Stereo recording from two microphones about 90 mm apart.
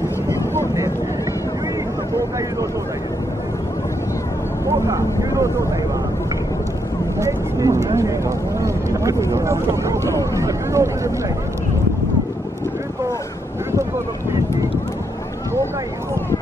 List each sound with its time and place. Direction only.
4.6 s vehicle: 35° right (ahead or behind)
7.2 s vehicle: 35° right (ahead or behind)
8.5 s speech: 35° right (ahead or behind)
10.4 s a sound: 35° right (ahead or behind)